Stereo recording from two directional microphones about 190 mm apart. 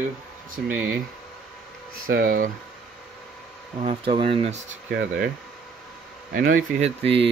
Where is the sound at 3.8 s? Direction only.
30° right (ahead or behind).